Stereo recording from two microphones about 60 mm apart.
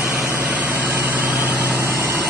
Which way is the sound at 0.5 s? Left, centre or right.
Right.